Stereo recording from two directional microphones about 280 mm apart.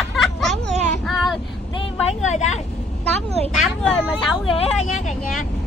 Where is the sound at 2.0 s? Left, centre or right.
Left.